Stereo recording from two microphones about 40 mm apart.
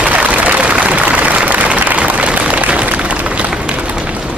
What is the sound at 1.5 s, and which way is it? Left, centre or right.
Applause, right.